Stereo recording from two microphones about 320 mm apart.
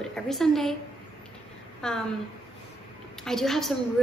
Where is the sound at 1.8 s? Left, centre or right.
Centre.